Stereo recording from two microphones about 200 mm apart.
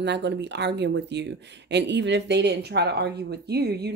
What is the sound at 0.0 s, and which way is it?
Speech, 60° right (ahead or behind).